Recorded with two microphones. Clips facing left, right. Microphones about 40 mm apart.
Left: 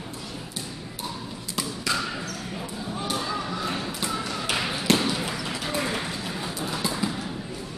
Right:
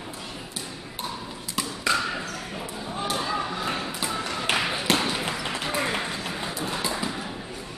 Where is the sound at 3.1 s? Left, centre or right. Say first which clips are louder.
Right 2 dB; centre.